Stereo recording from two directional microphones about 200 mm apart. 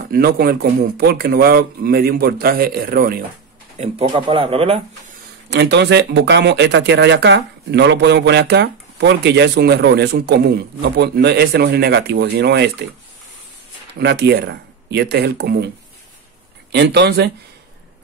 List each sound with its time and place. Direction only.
0.1 s a man's voice: 50° right (ahead or behind)
3.7 s speech: 30° right (ahead or behind)
5.5 s speech: 60° right (ahead or behind)
13.9 s speech: 55° right (ahead or behind)
16.7 s speech: 60° right (ahead or behind)